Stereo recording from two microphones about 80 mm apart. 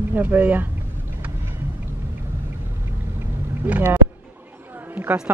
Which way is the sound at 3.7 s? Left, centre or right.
Right.